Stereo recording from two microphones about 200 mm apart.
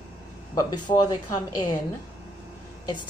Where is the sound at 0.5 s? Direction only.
20° left (ahead or behind).